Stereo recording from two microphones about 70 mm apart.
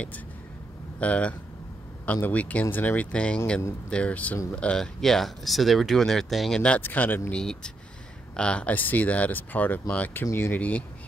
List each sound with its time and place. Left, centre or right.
0.9 s speech: centre
6.8 s speech: left
7.3 s speech: centre
10.3 s speech: left